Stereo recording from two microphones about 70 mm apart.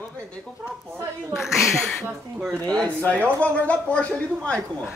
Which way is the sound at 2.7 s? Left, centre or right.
Left.